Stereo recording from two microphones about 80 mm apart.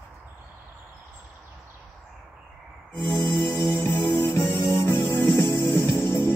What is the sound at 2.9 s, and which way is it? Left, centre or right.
Music, left.